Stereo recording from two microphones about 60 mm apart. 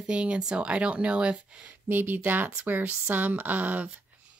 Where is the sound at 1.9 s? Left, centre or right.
Right.